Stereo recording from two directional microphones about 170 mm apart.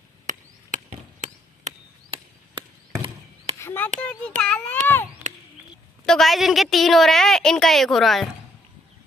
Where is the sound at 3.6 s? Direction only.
15° left (ahead or behind).